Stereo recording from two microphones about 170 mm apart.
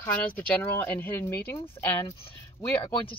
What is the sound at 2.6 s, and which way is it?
Speech, 30° left (ahead or behind).